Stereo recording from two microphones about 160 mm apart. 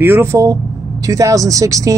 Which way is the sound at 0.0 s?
15° right (ahead or behind).